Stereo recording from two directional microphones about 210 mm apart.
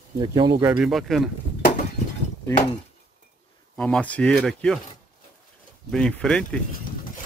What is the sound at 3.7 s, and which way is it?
Speech, 5° left (ahead or behind).